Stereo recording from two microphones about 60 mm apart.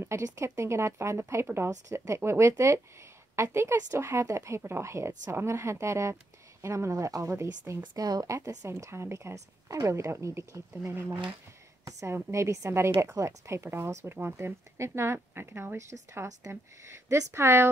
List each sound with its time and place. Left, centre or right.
0.0 s speech: right
6.9 s speech: right
8.6 s a woman's voice: right
12.1 s speech: right
16.4 s a woman's voice: right